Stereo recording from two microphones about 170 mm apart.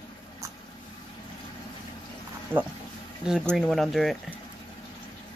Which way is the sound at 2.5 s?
15° right (ahead or behind).